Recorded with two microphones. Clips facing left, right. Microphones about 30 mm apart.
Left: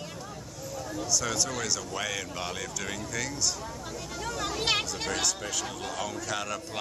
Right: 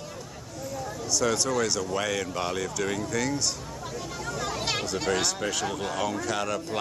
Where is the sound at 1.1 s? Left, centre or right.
Centre.